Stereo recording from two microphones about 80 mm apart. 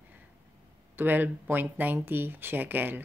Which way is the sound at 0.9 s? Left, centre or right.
Right.